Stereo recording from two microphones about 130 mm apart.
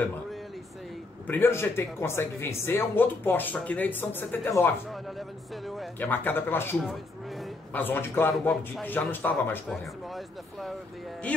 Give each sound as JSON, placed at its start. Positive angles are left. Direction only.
{"t": 1.2, "sound": "a man's voice", "side_deg": 15}
{"t": 5.9, "sound": "a man's voice", "side_deg": 15}
{"t": 8.3, "sound": "speech", "side_deg": 0}
{"t": 8.8, "sound": "a man's voice", "side_deg": 15}
{"t": 9.7, "sound": "speech", "side_deg": 0}